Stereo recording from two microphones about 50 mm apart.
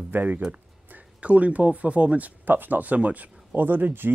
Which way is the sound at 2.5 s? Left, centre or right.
Right.